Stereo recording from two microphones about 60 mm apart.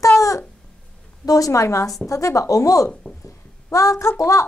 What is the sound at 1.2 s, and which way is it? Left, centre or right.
A woman's voice, left.